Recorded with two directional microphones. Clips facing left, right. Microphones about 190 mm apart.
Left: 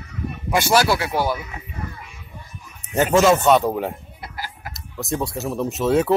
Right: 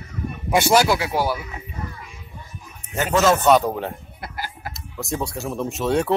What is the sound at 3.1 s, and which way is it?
Speech, 10° left (ahead or behind).